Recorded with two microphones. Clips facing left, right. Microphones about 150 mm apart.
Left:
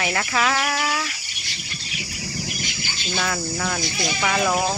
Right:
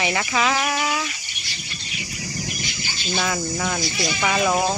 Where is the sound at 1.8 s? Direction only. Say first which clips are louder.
Even; 5° left (ahead or behind).